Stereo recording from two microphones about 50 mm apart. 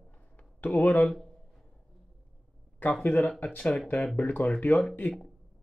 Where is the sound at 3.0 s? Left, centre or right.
Left.